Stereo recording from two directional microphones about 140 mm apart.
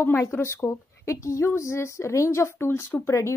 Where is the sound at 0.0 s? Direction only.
15° left (ahead or behind).